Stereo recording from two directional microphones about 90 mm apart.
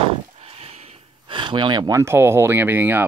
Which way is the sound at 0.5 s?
90° right.